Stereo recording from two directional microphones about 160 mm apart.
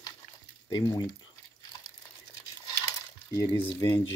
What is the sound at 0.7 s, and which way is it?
Speech, 25° left (ahead or behind).